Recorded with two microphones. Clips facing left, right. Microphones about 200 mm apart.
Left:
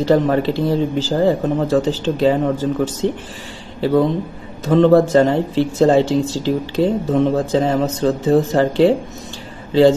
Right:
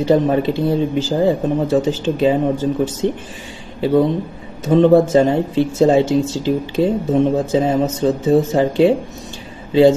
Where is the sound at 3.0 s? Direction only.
20° left (ahead or behind).